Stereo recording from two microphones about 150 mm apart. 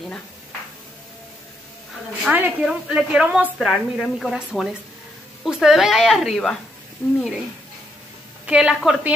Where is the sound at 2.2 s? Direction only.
5° right (ahead or behind).